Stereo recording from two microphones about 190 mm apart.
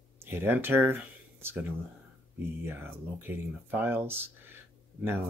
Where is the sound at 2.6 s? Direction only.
10° right (ahead or behind).